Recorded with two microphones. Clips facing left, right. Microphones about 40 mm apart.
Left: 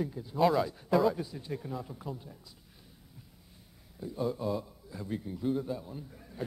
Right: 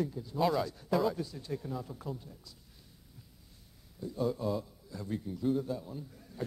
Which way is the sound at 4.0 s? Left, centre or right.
Centre.